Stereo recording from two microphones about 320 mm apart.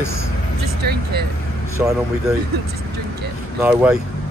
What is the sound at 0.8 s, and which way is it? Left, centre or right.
Speech, right.